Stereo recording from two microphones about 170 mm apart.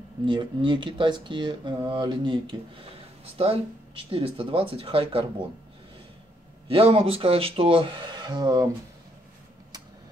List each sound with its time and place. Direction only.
0.2 s speech: 30° right (ahead or behind)
6.7 s speech: 35° right (ahead or behind)